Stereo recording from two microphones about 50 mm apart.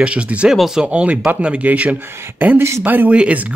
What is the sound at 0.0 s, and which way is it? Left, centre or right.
Speech, right.